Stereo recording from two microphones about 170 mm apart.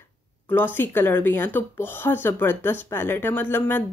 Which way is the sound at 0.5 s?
10° left (ahead or behind).